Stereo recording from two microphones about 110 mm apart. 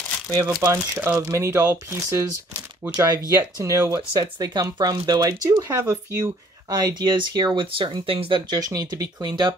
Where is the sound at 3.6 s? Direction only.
25° right (ahead or behind).